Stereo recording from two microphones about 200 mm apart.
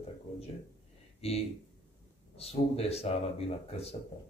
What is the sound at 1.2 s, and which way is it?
A man's voice, 30° left (ahead or behind).